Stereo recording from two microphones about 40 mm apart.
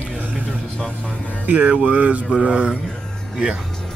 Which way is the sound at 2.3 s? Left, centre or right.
Right.